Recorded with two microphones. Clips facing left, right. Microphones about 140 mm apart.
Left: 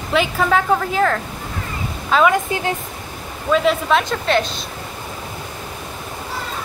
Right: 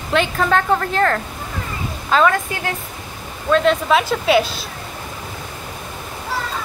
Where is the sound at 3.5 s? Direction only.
5° left (ahead or behind).